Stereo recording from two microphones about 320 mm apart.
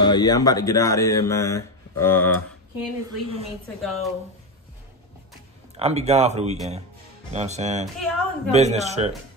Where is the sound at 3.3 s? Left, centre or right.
Centre.